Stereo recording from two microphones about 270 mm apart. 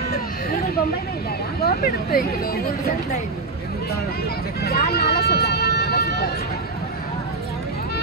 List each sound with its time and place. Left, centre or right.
1.6 s speech: left
4.6 s vehicle: left